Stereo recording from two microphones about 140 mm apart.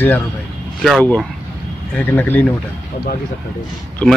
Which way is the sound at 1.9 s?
10° left (ahead or behind).